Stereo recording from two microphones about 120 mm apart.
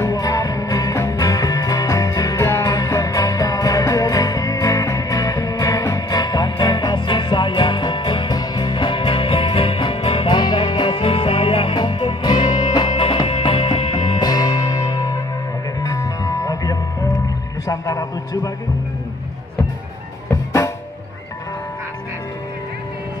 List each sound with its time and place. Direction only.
0.0 s music: 30° left (ahead or behind)
17.6 s a sound: 30° left (ahead or behind)
20.2 s music: 20° left (ahead or behind)